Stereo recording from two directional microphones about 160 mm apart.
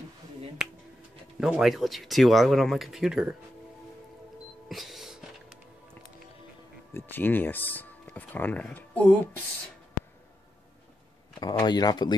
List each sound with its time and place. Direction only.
1.4 s speech: centre (ahead or behind)
4.6 s music: centre (ahead or behind)
6.9 s speech: 15° left (ahead or behind)
11.3 s speech: 25° left (ahead or behind)